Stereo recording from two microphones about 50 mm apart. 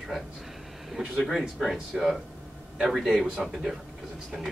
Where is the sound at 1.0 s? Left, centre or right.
Centre.